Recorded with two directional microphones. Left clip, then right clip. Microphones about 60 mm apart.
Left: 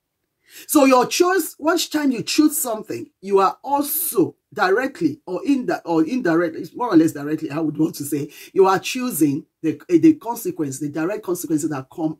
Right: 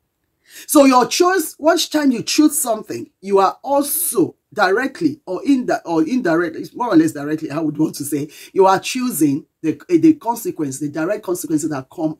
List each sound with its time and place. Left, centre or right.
0.7 s speech: right